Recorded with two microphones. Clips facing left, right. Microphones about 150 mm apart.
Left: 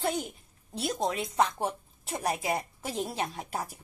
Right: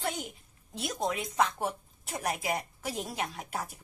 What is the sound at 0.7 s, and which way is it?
A woman's voice, 35° left (ahead or behind).